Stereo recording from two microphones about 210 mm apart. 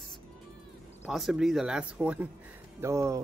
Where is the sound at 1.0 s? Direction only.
Centre (ahead or behind).